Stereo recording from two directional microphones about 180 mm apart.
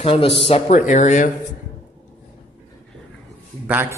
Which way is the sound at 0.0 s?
30° left (ahead or behind).